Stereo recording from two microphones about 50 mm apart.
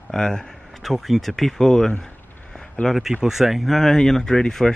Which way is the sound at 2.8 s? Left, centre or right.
Left.